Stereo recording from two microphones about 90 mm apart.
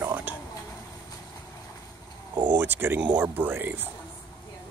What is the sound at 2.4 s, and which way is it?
Speech, 20° right (ahead or behind).